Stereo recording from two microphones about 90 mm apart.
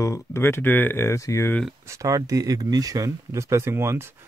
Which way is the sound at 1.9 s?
40° right (ahead or behind).